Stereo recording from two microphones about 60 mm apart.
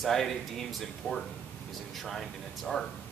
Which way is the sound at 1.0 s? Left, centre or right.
Left.